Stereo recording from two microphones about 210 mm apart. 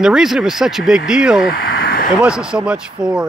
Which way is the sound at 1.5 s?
45° left (ahead or behind).